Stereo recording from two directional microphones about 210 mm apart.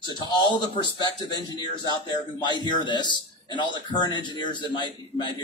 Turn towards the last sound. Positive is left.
turn(degrees=20)  # may be behind; listen again after turning